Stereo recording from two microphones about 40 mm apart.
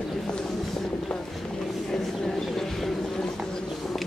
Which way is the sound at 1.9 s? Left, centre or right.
Centre.